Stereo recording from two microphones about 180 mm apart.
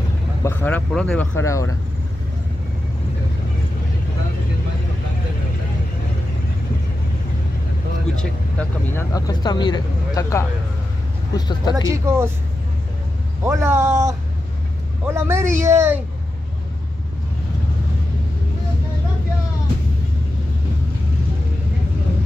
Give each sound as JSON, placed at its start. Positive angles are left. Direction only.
{"t": 0.4, "sound": "speech", "side_deg": 10}
{"t": 1.4, "sound": "speech", "side_deg": 15}
{"t": 8.2, "sound": "speech", "side_deg": 5}
{"t": 9.1, "sound": "speech", "side_deg": 25}
{"t": 11.7, "sound": "speech", "side_deg": -15}
{"t": 13.4, "sound": "speech", "side_deg": -15}